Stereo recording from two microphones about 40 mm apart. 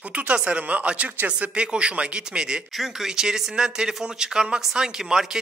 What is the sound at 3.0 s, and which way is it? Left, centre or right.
A man's voice, centre.